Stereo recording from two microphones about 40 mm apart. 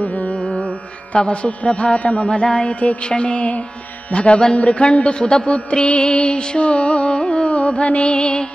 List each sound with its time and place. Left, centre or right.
0.0 s carnatic music: left
1.1 s a man's voice: left
2.8 s a man's voice: left
4.6 s music: left